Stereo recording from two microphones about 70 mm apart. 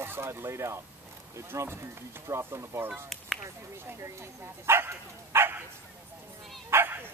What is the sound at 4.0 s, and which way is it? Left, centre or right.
Speech, right.